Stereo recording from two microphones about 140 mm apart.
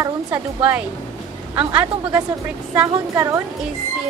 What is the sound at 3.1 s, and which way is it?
Speech, 20° right (ahead or behind).